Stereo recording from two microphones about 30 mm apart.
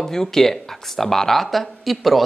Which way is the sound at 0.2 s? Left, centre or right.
Centre.